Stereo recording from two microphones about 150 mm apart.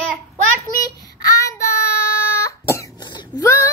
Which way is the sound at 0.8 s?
20° left (ahead or behind).